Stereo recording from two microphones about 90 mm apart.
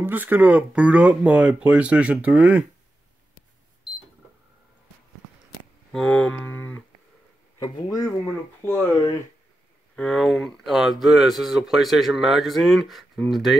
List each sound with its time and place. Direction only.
0.0 s speech: 20° right (ahead or behind)
5.9 s cattle: 10° left (ahead or behind)
7.5 s speech: 40° left (ahead or behind)
8.6 s speech: 25° left (ahead or behind)
9.9 s speech: 5° left (ahead or behind)